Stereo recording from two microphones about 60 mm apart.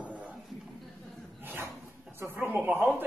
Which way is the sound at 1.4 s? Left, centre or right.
Right.